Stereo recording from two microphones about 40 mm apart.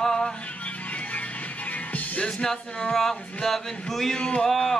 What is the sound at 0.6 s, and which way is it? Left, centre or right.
Music, left.